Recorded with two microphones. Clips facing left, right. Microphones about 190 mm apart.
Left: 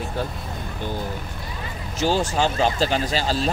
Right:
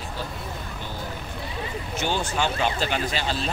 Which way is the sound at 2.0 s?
35° left (ahead or behind).